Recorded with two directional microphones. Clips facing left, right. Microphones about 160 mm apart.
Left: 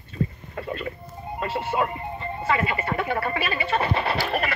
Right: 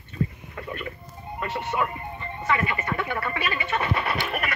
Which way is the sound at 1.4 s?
30° left (ahead or behind).